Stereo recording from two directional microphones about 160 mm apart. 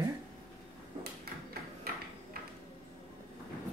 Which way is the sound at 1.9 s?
70° right (ahead or behind).